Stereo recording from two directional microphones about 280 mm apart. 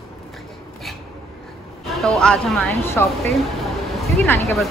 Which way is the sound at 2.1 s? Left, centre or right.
Centre.